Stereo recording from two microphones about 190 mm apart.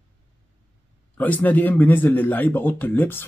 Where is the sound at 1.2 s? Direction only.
10° left (ahead or behind).